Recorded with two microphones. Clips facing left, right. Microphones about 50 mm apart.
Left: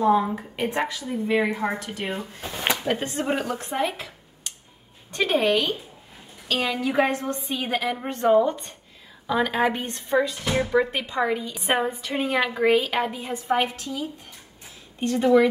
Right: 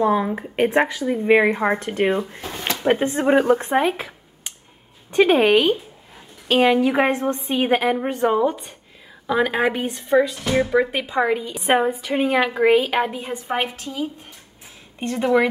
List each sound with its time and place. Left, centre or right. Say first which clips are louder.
0.0 s a woman's voice: right 1 dB; right
1.2 s a woman's voice: right 7 dB; right
7.1 s a woman's voice: right 5 dB; centre
7.4 s speech: right 9 dB; right
8.1 s a woman's voice: left 4 dB; centre